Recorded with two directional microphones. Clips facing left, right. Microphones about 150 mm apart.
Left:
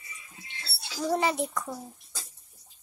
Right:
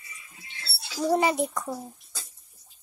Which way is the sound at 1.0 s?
15° right (ahead or behind).